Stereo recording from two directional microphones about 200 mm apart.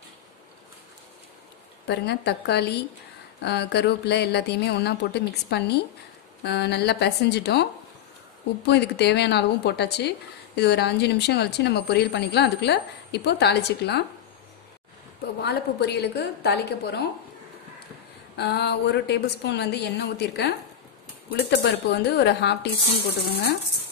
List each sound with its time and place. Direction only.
1.9 s a woman's voice: 55° left (ahead or behind)
8.6 s a woman's voice: 55° left (ahead or behind)
15.4 s a woman's voice: 55° left (ahead or behind)
18.4 s a woman's voice: 55° left (ahead or behind)